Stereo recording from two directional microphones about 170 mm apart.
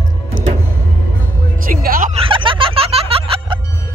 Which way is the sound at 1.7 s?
55° right (ahead or behind).